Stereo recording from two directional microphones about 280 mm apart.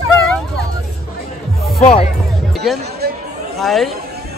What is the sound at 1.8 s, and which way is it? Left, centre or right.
Speech, left.